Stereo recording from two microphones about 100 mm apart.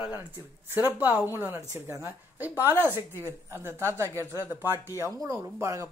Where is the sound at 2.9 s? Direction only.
25° right (ahead or behind).